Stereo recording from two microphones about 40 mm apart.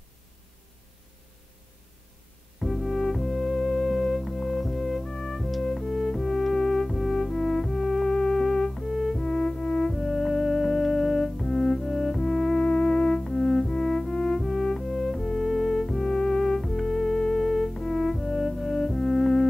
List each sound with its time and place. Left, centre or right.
2.6 s music: centre
12.6 s music: centre